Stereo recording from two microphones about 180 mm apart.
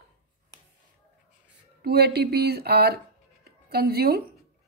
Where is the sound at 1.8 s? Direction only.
65° right (ahead or behind).